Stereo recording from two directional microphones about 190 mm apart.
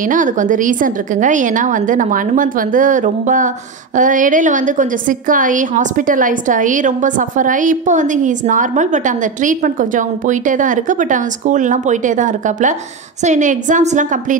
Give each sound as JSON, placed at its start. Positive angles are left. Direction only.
{"t": 0.1, "sound": "a woman's voice", "side_deg": -45}